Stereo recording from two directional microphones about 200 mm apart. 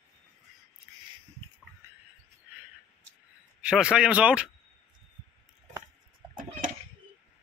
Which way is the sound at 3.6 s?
5° right (ahead or behind).